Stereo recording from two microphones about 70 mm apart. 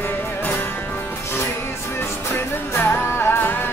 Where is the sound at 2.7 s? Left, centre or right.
Left.